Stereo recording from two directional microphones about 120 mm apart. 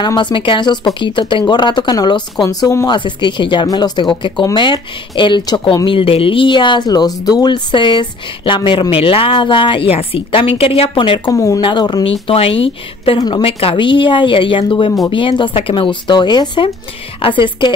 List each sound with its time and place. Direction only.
0.0 s speech: 40° left (ahead or behind)
2.9 s a woman's voice: 40° left (ahead or behind)
11.3 s speech: 30° left (ahead or behind)
11.6 s speech: 40° left (ahead or behind)
12.0 s a woman's voice: 50° left (ahead or behind)